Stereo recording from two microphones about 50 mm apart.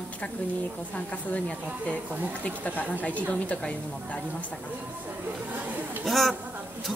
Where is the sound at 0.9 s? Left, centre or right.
Left.